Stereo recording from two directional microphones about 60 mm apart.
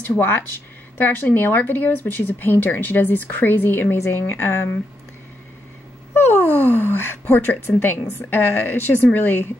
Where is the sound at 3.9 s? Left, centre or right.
Left.